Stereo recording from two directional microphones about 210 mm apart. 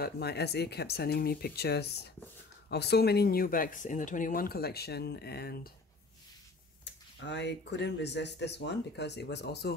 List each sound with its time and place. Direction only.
0.0 s speech: 50° left (ahead or behind)
6.8 s speech: 55° left (ahead or behind)